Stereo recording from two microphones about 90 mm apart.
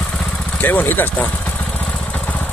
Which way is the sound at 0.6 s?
20° left (ahead or behind).